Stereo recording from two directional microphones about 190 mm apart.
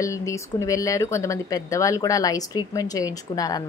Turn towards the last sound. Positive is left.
turn(degrees=20)  # may be behind; listen again after turning